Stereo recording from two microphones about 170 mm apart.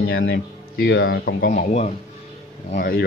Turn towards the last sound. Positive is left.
turn(degrees=60)  # may be behind; listen again after turning